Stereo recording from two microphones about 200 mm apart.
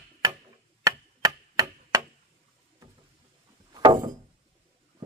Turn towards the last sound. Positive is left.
turn(degrees=-20)  # may be behind; listen again after turning